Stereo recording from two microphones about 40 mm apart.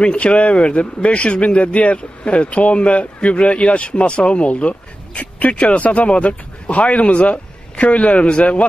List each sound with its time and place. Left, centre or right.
0.0 s speech: left